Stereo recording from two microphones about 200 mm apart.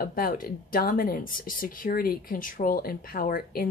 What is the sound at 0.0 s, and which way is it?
Speech, 45° left (ahead or behind).